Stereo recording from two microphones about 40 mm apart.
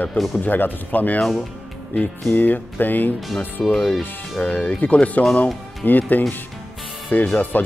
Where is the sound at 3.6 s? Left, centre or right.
Left.